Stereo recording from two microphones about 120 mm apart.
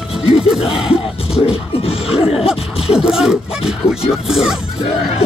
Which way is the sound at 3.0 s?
5° right (ahead or behind).